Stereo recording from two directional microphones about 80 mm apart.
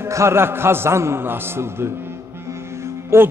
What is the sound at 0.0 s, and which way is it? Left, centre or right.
A man's voice, right.